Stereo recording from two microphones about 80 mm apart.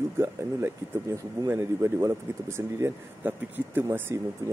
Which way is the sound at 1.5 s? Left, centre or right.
Right.